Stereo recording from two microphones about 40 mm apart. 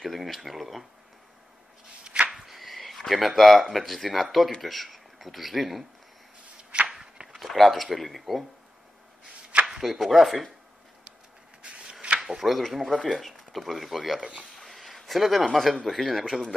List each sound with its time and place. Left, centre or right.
0.0 s speech: centre
2.2 s speech: centre
6.9 s walk: centre
7.3 s speech: centre
9.7 s speech: centre
11.8 s rub: right
12.2 s speech: centre